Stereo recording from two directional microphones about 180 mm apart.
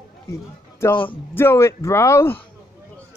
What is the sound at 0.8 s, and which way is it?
Speech, 15° left (ahead or behind).